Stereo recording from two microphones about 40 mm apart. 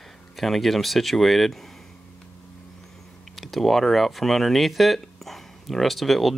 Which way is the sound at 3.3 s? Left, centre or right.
Centre.